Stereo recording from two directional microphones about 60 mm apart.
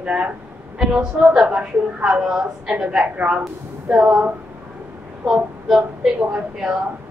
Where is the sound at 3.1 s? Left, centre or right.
Right.